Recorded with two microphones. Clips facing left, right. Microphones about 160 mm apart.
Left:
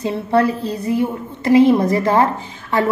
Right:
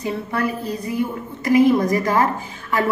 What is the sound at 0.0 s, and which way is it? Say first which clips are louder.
A woman's voice: left 7 dB; 30° left (ahead or behind).